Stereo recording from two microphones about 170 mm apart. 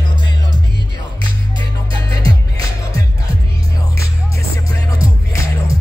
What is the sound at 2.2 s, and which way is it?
Music, 20° left (ahead or behind).